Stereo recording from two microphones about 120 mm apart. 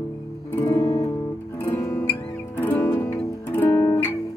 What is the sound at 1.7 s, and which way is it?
Music, 20° left (ahead or behind).